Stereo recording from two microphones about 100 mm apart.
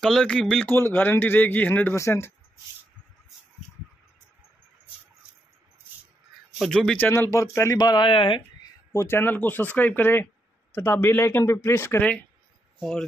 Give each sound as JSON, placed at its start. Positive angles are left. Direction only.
{"t": 0.0, "sound": "speech", "side_deg": 5}
{"t": 0.7, "sound": "speech", "side_deg": 25}
{"t": 6.6, "sound": "speech", "side_deg": 5}
{"t": 7.0, "sound": "speech", "side_deg": 25}
{"t": 7.7, "sound": "speech", "side_deg": 45}
{"t": 8.1, "sound": "speech", "side_deg": 60}
{"t": 8.9, "sound": "speech", "side_deg": 25}